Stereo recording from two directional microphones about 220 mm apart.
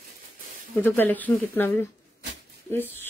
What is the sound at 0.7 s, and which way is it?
Speech, 10° left (ahead or behind).